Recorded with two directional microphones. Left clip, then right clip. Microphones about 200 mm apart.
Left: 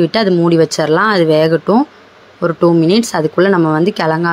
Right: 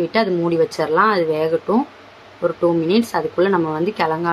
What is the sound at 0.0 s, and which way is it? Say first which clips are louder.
Speech: left 6 dB; 35° left (ahead or behind).